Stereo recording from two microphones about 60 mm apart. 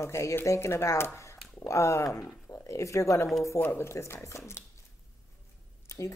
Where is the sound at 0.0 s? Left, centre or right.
Left.